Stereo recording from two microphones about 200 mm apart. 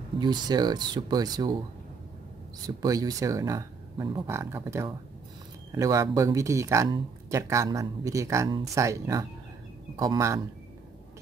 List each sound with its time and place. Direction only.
0.2 s speech: 20° right (ahead or behind)
2.6 s speech: 20° right (ahead or behind)